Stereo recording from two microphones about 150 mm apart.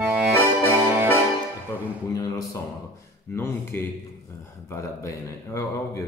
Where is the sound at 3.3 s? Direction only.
15° left (ahead or behind).